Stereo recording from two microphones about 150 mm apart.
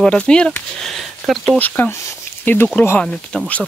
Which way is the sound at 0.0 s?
5° left (ahead or behind).